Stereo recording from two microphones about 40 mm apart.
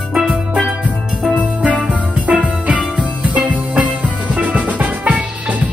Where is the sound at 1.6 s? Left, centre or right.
Right.